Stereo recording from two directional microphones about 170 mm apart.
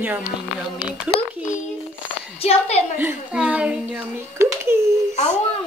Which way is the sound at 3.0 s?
10° right (ahead or behind).